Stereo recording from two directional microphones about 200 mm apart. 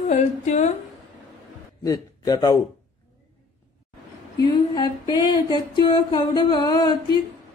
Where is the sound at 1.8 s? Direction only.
20° left (ahead or behind).